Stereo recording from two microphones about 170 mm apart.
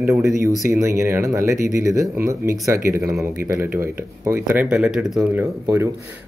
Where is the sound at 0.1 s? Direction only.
15° right (ahead or behind).